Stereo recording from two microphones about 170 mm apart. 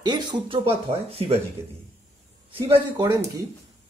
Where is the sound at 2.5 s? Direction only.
30° right (ahead or behind).